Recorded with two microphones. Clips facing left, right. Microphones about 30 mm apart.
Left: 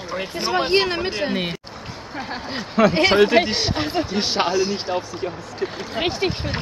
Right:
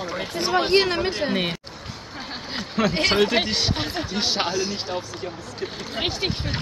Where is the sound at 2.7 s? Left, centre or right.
Centre.